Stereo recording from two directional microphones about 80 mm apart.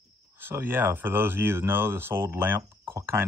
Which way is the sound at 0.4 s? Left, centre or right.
Right.